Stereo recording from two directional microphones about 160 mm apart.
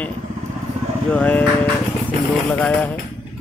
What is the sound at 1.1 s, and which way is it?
Speech, 10° left (ahead or behind).